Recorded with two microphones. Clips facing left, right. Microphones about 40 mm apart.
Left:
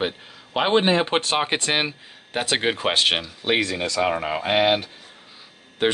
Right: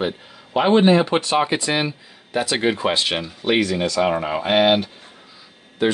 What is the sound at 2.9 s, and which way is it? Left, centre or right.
Speech, left.